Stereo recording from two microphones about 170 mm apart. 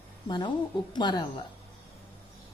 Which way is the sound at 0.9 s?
25° left (ahead or behind).